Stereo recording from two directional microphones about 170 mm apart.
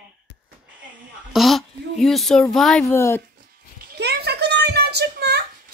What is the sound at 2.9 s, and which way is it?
Speech, 15° left (ahead or behind).